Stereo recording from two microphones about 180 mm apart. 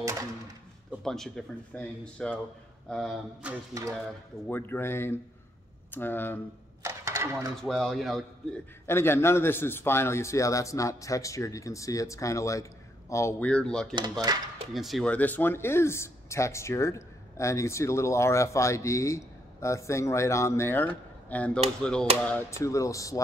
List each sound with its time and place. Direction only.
1.0 s speech: 5° left (ahead or behind)
4.5 s speech: 10° left (ahead or behind)
6.8 s a sound: 15° right (ahead or behind)
7.6 s speech: centre (ahead or behind)
8.8 s speech: 15° left (ahead or behind)
14.3 s speech: 20° right (ahead or behind)
14.7 s speech: centre (ahead or behind); by 23.2 s 20° left (ahead or behind)